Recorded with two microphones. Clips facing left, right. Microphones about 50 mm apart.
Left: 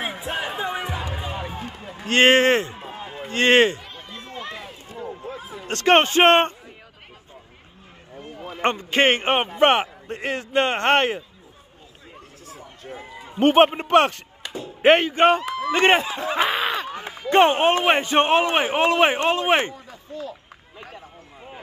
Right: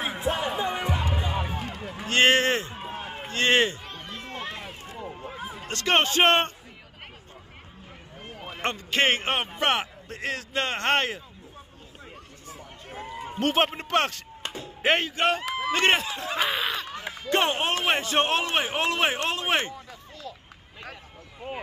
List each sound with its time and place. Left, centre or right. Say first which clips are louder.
0.0 s music: even; centre
1.3 s run: even; centre
2.0 s a man's voice: left 5 dB; left
4.3 s run: left 2 dB; right
5.7 s a man's voice: left 7 dB; left
8.6 s a man's voice: left 5 dB; left
12.4 s a sound: left 3 dB; centre
13.4 s a man's voice: left 9 dB; left
16.8 s a sound: left 4 dB; centre
17.4 s a man's voice: left 10 dB; left
19.7 s a sound: left 5 dB; centre